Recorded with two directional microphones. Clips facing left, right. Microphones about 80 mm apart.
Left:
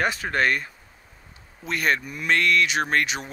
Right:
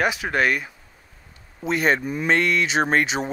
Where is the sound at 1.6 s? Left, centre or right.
Right.